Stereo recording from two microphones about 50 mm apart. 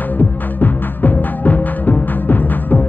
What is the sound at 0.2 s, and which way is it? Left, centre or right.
Music, left.